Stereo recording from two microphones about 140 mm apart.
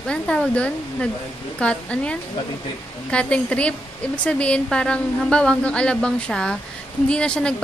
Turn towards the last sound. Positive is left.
turn(degrees=5)  # may be behind; listen again after turning